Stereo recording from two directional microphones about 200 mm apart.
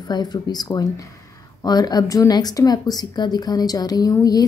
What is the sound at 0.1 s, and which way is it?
Speech, 20° left (ahead or behind).